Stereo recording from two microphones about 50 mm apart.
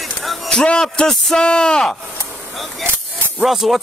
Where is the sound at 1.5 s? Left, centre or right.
Centre.